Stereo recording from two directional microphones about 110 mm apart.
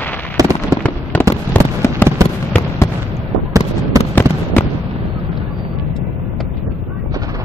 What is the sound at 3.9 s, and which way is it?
Fireworks, 30° right (ahead or behind).